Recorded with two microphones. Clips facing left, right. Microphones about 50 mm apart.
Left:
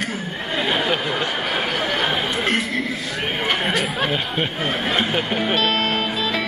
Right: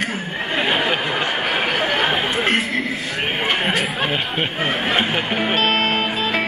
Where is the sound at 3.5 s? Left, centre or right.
Centre.